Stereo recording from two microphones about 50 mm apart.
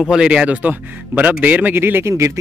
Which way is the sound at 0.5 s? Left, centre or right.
Right.